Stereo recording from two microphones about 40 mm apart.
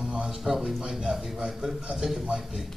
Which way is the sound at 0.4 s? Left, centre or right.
Centre.